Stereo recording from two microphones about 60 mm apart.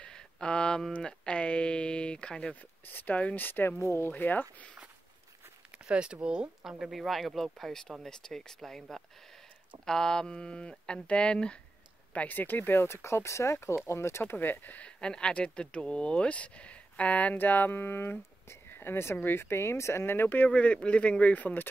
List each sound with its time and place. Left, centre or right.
0.0 s a sound: centre
2.9 s speech: left
3.8 s speech: left
4.1 s speech: left
5.9 s speech: centre
6.8 s speech: centre
12.1 s speech: left
14.3 s speech: left
14.8 s speech: centre; by 18.1 s left
18.5 s a sound: left
19.1 s speech: left
20.4 s speech: left